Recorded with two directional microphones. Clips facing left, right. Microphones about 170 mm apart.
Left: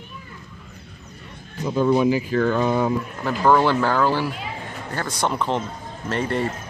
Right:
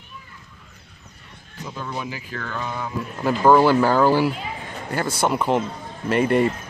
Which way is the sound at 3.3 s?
10° right (ahead or behind).